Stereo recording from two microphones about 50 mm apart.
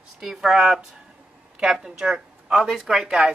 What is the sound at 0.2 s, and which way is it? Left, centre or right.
Speech, centre.